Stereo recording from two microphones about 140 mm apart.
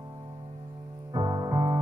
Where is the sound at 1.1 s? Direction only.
30° right (ahead or behind).